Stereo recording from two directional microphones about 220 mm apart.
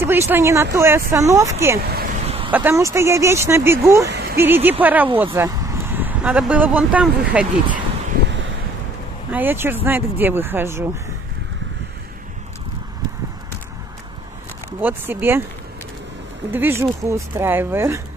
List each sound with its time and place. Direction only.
0.0 s speech: 10° right (ahead or behind)
1.9 s vehicle: 45° right (ahead or behind)
2.2 s a sound: 25° right (ahead or behind)
2.5 s speech: 10° right (ahead or behind)
4.1 s a sound: 45° right (ahead or behind)
4.4 s speech: 10° right (ahead or behind)
9.3 s speech: 10° right (ahead or behind)
14.8 s speech: 10° right (ahead or behind)
16.5 s speech: 10° right (ahead or behind)